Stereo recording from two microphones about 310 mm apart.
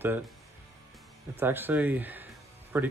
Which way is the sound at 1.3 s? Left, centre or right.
Centre.